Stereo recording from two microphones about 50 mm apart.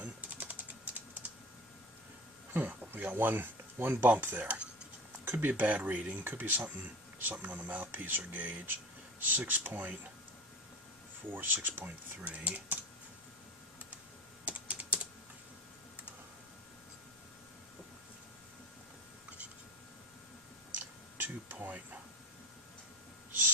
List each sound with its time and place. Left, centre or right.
0.0 s typing: right
2.5 s speech: right
7.3 s speech: right
7.8 s speech: right
11.3 s speech: right
12.2 s speech: right
14.4 s typing: right
21.2 s a sound: right